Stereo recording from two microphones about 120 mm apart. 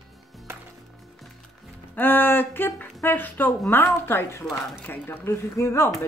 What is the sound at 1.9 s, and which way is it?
A woman's voice, 15° left (ahead or behind).